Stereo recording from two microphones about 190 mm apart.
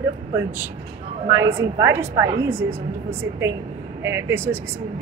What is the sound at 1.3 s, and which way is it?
A woman's voice, 15° right (ahead or behind).